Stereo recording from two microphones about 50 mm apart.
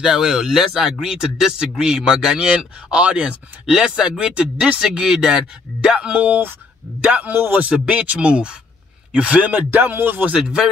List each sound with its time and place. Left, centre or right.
0.0 s speech: centre
7.1 s music: right
7.8 s speech: right
9.5 s music: right
10.4 s speech: centre